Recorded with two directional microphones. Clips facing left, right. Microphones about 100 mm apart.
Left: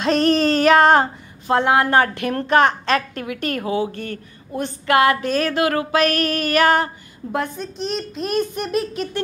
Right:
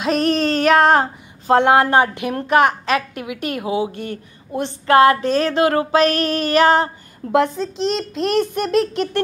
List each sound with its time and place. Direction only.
0.0 s female singing: 5° right (ahead or behind)
1.5 s a woman's voice: 30° right (ahead or behind)
2.1 s a woman's voice: 10° right (ahead or behind); by 6.9 s 30° right (ahead or behind)
7.3 s a child's voice: 90° right